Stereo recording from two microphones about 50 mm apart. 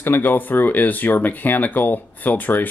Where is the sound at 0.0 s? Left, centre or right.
Left.